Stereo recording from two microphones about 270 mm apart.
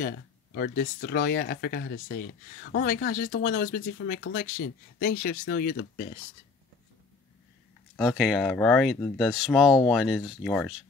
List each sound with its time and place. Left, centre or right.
0.6 s speech: left
7.9 s speech: centre